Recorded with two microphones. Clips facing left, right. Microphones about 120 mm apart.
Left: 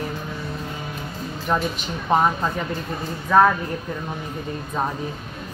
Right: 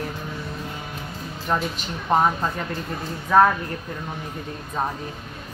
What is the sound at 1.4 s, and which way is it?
Speech, centre (ahead or behind).